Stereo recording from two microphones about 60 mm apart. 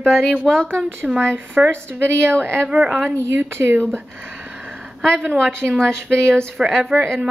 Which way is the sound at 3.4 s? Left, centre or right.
Right.